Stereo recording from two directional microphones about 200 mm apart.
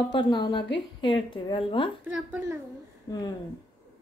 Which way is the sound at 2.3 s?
15° right (ahead or behind).